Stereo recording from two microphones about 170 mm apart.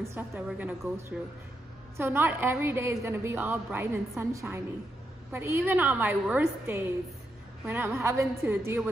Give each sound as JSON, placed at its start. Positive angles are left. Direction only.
{"t": 0.1, "sound": "a woman's voice", "side_deg": -15}